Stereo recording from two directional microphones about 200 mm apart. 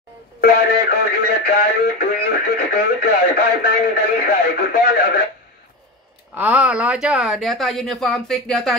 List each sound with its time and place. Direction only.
0.4 s music: 50° left (ahead or behind)
1.4 s speech: 50° left (ahead or behind)
6.3 s speech: 5° right (ahead or behind)